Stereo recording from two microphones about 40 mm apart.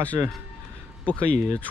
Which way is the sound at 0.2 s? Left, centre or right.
Right.